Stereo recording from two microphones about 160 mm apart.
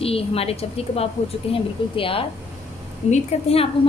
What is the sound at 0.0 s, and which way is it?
A woman's voice, 35° left (ahead or behind).